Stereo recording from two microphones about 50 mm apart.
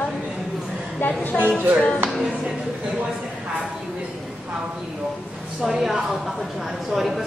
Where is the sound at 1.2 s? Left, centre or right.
Left.